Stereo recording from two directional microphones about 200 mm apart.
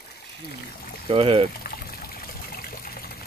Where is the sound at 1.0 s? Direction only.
25° right (ahead or behind).